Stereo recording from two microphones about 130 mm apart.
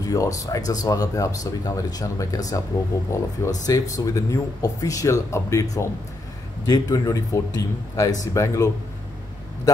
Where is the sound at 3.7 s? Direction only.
25° left (ahead or behind).